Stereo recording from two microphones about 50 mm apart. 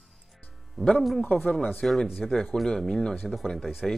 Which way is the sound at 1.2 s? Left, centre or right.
Left.